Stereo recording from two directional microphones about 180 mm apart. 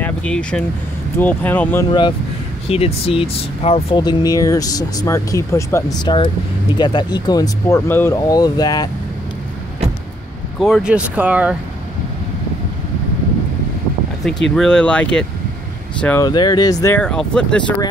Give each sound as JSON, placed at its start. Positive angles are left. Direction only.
{"t": 0.0, "sound": "speech", "side_deg": 5}
{"t": 1.9, "sound": "speech", "side_deg": 25}
{"t": 10.6, "sound": "speech", "side_deg": -5}
{"t": 14.5, "sound": "speech", "side_deg": 5}
{"t": 16.2, "sound": "speech", "side_deg": 20}
{"t": 16.8, "sound": "speech", "side_deg": 10}